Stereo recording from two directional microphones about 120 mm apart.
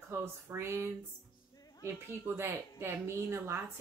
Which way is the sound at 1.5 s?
30° left (ahead or behind).